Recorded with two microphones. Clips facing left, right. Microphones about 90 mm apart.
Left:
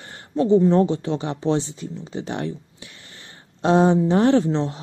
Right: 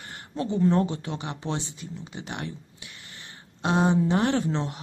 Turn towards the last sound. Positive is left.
turn(degrees=25)  # may be behind; listen again after turning